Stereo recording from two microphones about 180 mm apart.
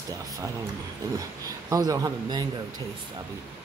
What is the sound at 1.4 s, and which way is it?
A man's voice, 20° right (ahead or behind).